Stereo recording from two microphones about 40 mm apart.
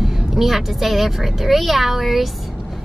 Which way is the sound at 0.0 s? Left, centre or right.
Centre.